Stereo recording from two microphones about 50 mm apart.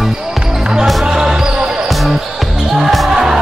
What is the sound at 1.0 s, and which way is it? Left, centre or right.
Basketball bounce, centre.